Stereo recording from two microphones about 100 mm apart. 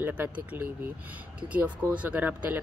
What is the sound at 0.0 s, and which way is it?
Music, 15° right (ahead or behind).